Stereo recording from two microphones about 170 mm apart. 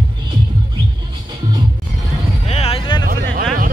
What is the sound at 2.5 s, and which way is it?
Music, 35° left (ahead or behind).